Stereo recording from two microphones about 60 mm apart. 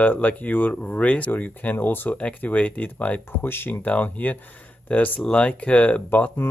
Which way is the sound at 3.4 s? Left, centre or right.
Left.